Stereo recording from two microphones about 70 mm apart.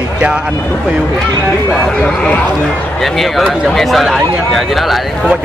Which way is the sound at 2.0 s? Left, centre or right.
Centre.